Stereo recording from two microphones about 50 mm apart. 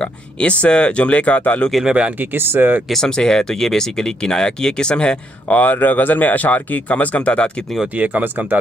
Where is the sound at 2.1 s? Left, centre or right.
Right.